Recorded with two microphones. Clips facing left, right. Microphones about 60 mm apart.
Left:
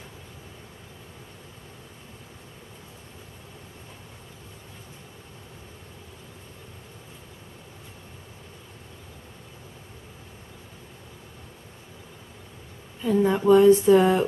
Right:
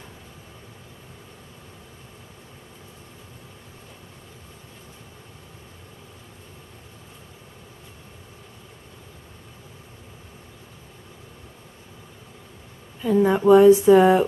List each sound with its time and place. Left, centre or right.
13.0 s speech: centre